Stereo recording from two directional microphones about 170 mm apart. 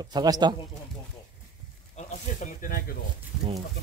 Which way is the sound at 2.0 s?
50° left (ahead or behind).